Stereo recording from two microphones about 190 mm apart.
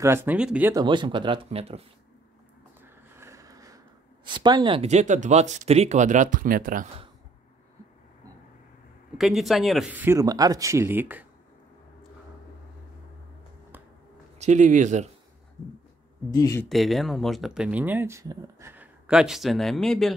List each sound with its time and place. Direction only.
0.0 s speech: 10° right (ahead or behind)
0.7 s speech: 25° right (ahead or behind)
2.8 s speech: 10° right (ahead or behind); by 6.9 s 45° right (ahead or behind)
9.2 s speech: centre (ahead or behind)
14.4 s speech: 40° right (ahead or behind)
16.3 s speech: 20° left (ahead or behind)
16.6 s speech: centre (ahead or behind)